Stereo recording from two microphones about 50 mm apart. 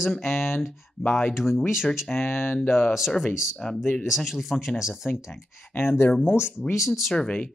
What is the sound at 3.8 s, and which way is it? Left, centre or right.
Speech, left.